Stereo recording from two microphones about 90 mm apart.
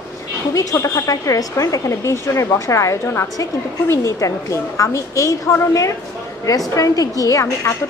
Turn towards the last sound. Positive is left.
turn(degrees=40)  # may be behind; listen again after turning